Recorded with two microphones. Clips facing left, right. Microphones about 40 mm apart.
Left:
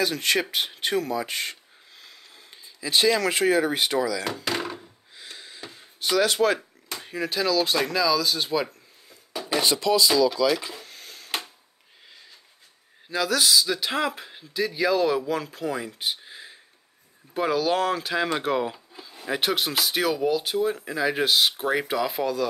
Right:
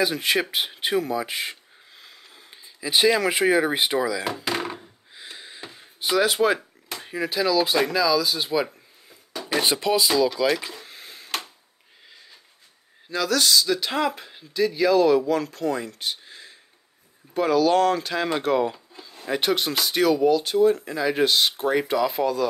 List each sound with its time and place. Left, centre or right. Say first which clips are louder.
0.0 s speech: right 1 dB; centre
9.6 s speech: even; right
10.3 s speech: even; centre
10.9 s a sound: right 1 dB; centre
13.1 s speech: right 1 dB; centre